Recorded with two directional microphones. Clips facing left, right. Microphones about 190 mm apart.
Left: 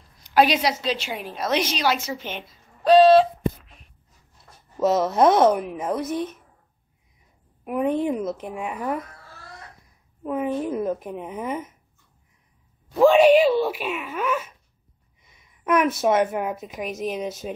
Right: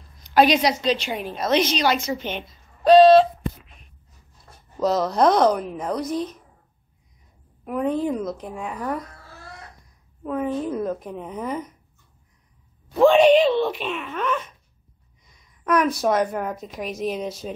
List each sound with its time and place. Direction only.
0.2 s a woman's voice: 5° left (ahead or behind)
4.7 s a woman's voice: 5° left (ahead or behind)
7.6 s a woman's voice: 15° left (ahead or behind)
8.3 s speech: 5° left (ahead or behind)
10.2 s speech: 10° left (ahead or behind)
12.9 s speech: 5° left (ahead or behind)
15.2 s a sound: 5° left (ahead or behind)
16.1 s a woman's voice: 5° left (ahead or behind)